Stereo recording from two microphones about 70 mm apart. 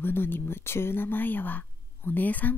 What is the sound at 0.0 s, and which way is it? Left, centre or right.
Speech, left.